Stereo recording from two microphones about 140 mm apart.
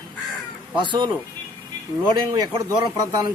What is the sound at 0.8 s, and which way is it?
Speech, 35° right (ahead or behind).